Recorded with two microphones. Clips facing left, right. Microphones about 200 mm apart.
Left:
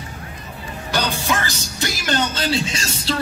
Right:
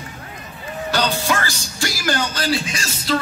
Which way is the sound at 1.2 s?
20° left (ahead or behind).